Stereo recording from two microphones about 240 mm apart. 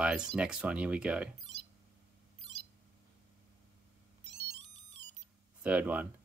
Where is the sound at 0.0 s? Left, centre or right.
Centre.